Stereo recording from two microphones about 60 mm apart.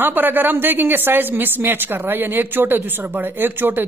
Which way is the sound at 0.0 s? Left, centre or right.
Right.